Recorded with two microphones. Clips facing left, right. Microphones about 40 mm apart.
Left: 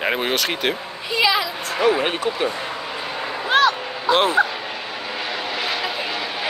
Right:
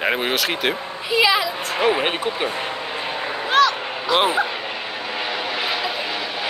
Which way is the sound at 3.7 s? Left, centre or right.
Right.